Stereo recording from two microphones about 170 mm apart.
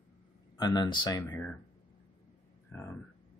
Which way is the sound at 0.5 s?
25° left (ahead or behind).